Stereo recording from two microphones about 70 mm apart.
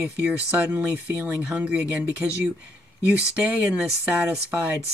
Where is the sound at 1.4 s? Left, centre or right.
Centre.